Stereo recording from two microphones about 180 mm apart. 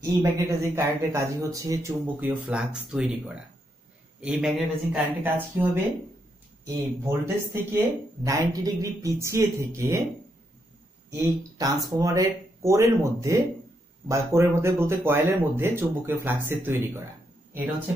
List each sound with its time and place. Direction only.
0.0 s speech: 15° right (ahead or behind)
6.6 s speech: 20° right (ahead or behind)
11.1 s speech: 20° right (ahead or behind)